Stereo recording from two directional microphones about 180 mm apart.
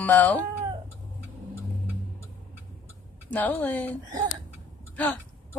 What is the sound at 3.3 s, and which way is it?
Speech, 10° left (ahead or behind).